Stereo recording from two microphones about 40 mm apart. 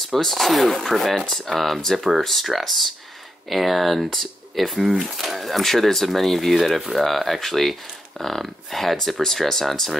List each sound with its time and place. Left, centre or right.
0.1 s speech: centre